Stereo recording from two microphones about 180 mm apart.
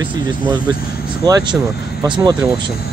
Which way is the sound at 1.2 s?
20° right (ahead or behind).